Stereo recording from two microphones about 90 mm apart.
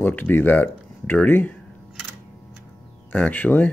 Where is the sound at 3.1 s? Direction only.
20° left (ahead or behind).